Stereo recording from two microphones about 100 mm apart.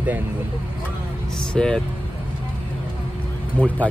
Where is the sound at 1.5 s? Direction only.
5° left (ahead or behind).